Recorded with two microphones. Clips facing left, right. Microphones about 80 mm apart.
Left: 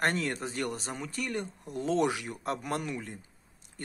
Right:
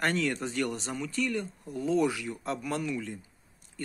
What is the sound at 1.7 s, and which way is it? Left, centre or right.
Speech, left.